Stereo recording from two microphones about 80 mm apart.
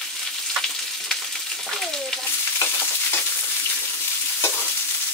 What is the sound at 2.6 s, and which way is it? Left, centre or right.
Frying, left.